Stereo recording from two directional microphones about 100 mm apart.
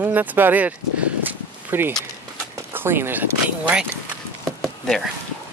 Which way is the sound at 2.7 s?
20° right (ahead or behind).